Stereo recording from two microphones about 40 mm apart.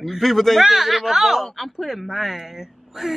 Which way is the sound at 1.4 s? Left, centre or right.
Centre.